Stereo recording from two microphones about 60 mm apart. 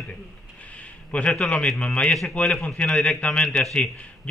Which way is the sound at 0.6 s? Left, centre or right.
Left.